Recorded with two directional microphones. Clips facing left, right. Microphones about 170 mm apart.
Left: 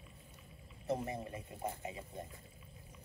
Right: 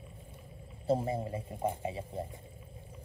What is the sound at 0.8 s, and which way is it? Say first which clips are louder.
A man's voice: right 7 dB; 30° right (ahead or behind).